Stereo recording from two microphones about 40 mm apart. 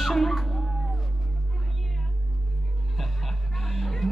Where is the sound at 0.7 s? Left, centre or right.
Centre.